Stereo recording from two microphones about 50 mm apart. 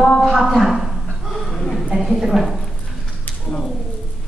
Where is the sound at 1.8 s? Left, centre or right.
Centre.